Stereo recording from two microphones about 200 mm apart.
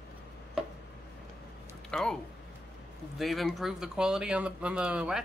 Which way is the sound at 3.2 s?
Centre (ahead or behind).